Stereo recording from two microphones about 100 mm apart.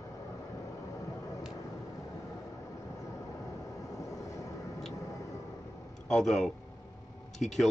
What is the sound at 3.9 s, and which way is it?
Vehicle, 35° left (ahead or behind).